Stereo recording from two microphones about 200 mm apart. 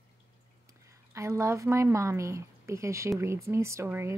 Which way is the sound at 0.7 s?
15° right (ahead or behind).